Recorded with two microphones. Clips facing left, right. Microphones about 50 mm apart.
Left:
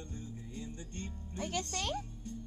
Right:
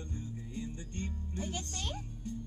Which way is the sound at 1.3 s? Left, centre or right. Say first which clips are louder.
Left 5 dB; left.